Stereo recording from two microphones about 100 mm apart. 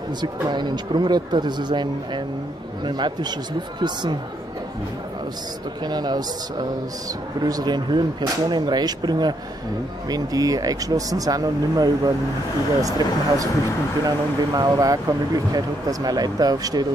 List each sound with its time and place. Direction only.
0.2 s speech: 45° right (ahead or behind)
5.9 s speech: 45° right (ahead or behind)